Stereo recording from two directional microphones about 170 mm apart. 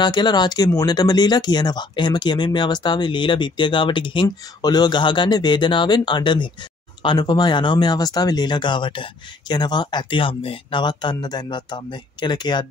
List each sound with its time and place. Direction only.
0.0 s speech: 25° left (ahead or behind)